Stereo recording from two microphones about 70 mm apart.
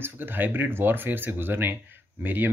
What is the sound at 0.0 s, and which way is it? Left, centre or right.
Speech, right.